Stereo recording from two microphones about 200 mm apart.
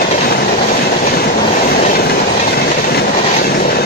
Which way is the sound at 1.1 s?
50° left (ahead or behind).